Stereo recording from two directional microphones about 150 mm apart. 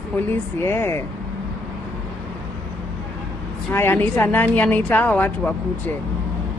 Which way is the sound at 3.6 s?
15° left (ahead or behind).